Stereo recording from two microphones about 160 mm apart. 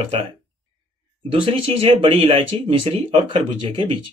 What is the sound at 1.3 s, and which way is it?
Speech, 35° right (ahead or behind).